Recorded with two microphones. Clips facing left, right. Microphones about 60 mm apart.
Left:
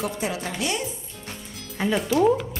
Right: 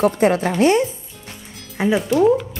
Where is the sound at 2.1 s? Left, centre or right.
Centre.